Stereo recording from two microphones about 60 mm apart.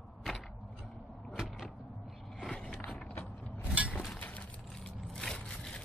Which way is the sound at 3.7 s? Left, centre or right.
Centre.